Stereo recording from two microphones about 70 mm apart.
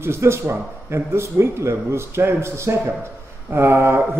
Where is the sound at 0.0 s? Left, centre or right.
Right.